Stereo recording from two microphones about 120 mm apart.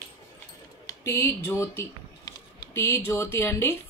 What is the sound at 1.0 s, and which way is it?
Speech, 20° left (ahead or behind).